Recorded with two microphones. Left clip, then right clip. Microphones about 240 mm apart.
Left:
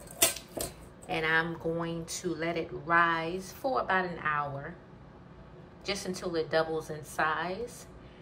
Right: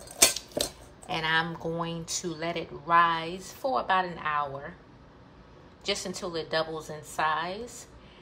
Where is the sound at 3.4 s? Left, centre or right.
Right.